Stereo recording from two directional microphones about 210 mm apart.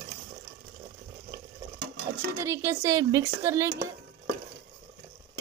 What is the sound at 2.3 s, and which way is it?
A woman's voice, 15° right (ahead or behind).